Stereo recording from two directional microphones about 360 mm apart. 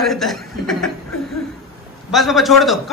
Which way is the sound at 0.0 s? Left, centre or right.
Centre.